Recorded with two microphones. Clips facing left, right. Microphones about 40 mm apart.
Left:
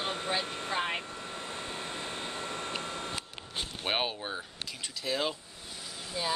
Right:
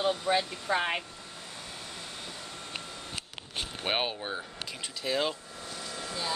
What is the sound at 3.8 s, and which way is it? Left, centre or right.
Speech, centre.